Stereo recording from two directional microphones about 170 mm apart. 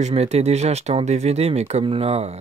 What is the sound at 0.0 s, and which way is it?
Speech, 40° right (ahead or behind).